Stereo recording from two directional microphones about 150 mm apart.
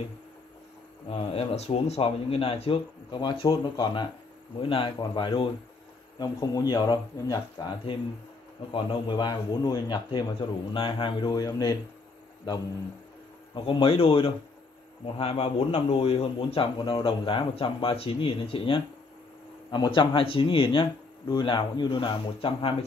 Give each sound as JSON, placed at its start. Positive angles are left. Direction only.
{"t": 1.0, "sound": "a man's voice", "side_deg": 40}
{"t": 13.7, "sound": "a man's voice", "side_deg": 35}